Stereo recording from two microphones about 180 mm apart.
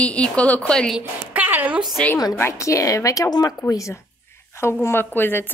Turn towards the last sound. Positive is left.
turn(degrees=10)  # may be behind; listen again after turning